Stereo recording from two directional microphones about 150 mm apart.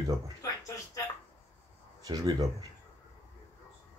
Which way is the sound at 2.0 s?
25° right (ahead or behind).